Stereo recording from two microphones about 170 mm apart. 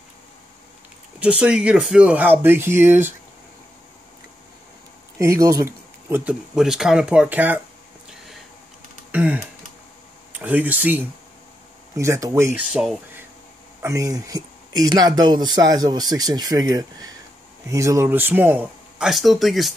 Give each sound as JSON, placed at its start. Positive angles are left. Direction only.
{"t": 1.2, "sound": "speech", "side_deg": -5}
{"t": 5.2, "sound": "speech", "side_deg": -20}
{"t": 9.1, "sound": "a sound", "side_deg": -10}
{"t": 10.3, "sound": "speech", "side_deg": -10}
{"t": 13.8, "sound": "speech", "side_deg": -20}